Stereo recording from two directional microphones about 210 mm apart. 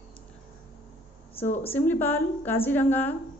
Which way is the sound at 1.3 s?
30° left (ahead or behind).